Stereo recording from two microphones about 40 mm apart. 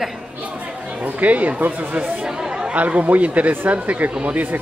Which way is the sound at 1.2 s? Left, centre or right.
Right.